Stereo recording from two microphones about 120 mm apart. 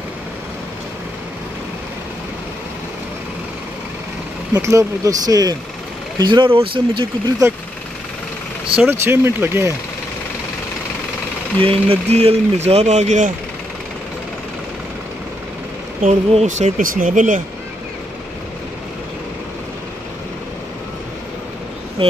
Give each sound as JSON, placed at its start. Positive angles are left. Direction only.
{"t": 4.6, "sound": "speech", "side_deg": -25}
{"t": 8.9, "sound": "speech", "side_deg": -20}
{"t": 11.6, "sound": "speech", "side_deg": -50}
{"t": 16.0, "sound": "speech", "side_deg": -75}